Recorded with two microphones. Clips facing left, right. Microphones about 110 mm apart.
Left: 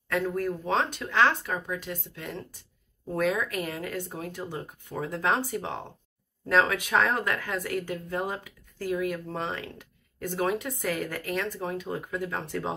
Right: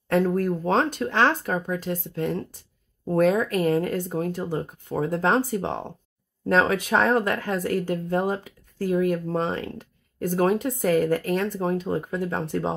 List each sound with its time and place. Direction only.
0.1 s speech: 35° right (ahead or behind)